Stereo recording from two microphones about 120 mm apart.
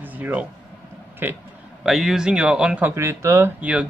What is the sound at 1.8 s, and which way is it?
Speech, centre (ahead or behind).